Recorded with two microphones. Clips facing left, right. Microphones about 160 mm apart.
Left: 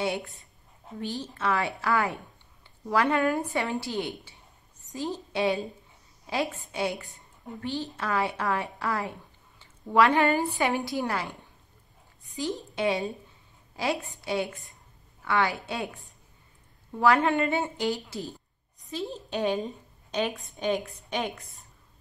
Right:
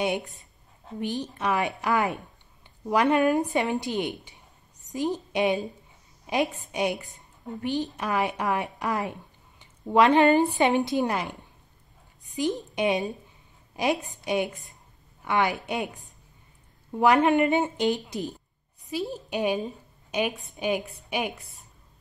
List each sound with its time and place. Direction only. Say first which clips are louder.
0.0 s a woman's voice: right 2 dB; 20° right (ahead or behind)
12.4 s a woman's voice: right 4 dB; 15° right (ahead or behind)